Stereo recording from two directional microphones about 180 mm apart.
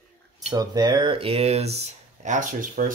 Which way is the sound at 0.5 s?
20° right (ahead or behind).